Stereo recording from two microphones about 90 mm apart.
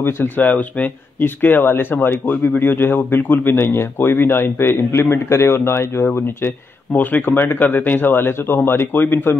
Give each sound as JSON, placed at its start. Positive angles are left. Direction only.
{"t": 0.0, "sound": "speech", "side_deg": 20}